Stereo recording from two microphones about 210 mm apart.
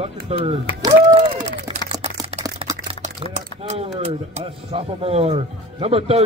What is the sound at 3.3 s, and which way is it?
Speech, 30° right (ahead or behind).